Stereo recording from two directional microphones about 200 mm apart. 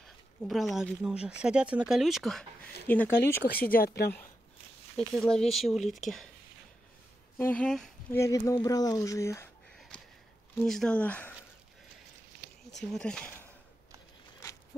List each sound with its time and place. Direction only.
0.0 s speech: centre (ahead or behind)
3.6 s a woman's voice: 45° left (ahead or behind)
4.9 s speech: centre (ahead or behind)
7.3 s speech: 10° left (ahead or behind)
8.2 s speech: 15° left (ahead or behind)
9.8 s a sound: 5° left (ahead or behind)
10.6 s speech: 5° left (ahead or behind)
12.7 s speech: 5° left (ahead or behind)